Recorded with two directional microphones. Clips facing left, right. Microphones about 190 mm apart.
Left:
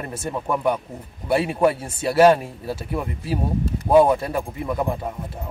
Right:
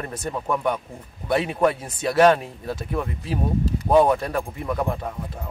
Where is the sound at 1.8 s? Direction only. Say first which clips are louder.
Left 3 dB; 30° left (ahead or behind).